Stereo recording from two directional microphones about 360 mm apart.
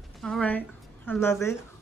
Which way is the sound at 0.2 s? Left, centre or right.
Centre.